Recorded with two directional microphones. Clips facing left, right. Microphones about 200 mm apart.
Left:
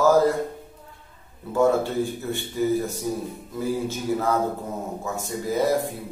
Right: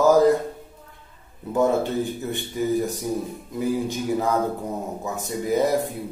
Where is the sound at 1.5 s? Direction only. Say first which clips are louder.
Even; 20° right (ahead or behind).